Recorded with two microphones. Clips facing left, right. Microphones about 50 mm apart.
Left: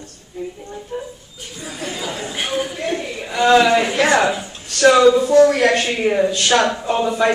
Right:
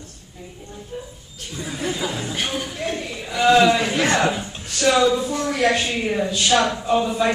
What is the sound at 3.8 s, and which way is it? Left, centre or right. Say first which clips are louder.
Speech: left 4 dB; centre.